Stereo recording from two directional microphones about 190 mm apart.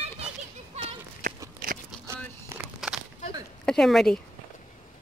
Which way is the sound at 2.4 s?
10° right (ahead or behind).